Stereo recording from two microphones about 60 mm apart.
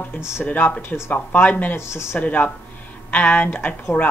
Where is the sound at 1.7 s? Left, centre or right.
Left.